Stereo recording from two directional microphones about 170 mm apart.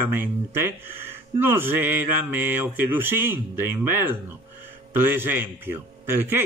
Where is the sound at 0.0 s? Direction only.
10° right (ahead or behind).